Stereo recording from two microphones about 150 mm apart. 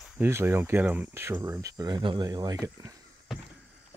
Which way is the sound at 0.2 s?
15° right (ahead or behind).